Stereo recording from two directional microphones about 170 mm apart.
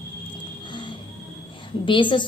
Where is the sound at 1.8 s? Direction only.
30° left (ahead or behind).